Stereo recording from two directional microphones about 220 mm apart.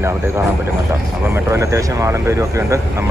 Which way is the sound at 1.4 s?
15° right (ahead or behind).